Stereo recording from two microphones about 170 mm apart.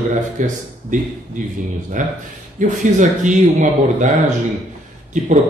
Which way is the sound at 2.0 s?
50° right (ahead or behind).